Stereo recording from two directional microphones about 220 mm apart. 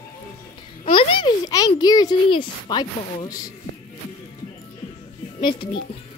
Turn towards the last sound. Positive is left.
turn(degrees=20)  # may be behind; listen again after turning